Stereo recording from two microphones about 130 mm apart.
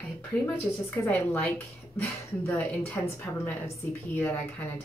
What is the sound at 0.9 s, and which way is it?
A woman's voice, 20° left (ahead or behind).